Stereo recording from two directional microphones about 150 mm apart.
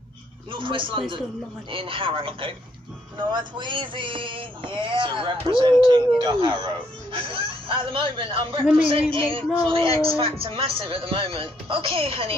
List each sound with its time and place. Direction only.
0.5 s speech: 35° right (ahead or behind)
9.8 s a man's voice: 25° left (ahead or behind)
10.1 s speech: 40° right (ahead or behind)